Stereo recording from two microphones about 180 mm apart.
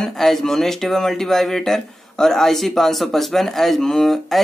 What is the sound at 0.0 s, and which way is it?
Speech, centre (ahead or behind).